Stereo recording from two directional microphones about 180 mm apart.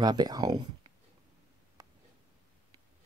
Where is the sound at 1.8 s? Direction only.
20° right (ahead or behind).